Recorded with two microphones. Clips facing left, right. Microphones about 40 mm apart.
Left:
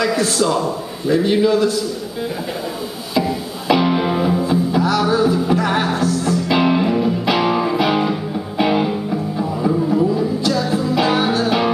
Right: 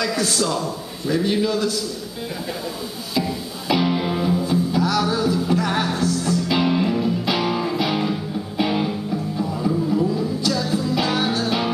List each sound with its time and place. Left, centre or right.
0.0 s a man's voice: centre
3.2 s music: centre